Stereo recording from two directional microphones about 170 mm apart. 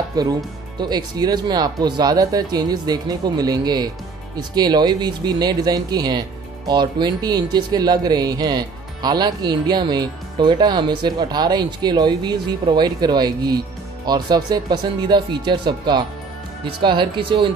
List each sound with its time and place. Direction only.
0.1 s speech: 25° right (ahead or behind)